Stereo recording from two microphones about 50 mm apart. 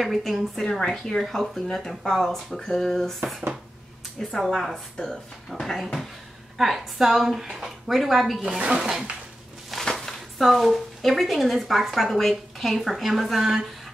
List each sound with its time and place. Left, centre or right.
0.0 s a woman's voice: centre
3.2 s a woman's voice: centre
6.6 s a woman's voice: centre
8.5 s speech: right
9.7 s a sound: centre
10.4 s a woman's voice: centre